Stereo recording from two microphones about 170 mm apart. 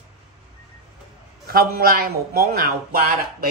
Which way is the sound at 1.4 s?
60° right (ahead or behind).